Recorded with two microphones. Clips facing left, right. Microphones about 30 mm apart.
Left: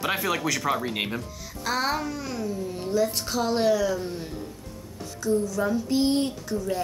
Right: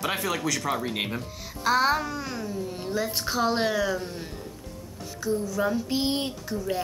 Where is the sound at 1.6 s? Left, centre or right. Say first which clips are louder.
Right 4 dB; centre; by 4.0 s right.